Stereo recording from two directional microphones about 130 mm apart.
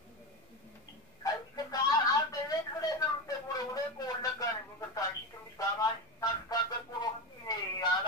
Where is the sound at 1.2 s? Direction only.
30° left (ahead or behind).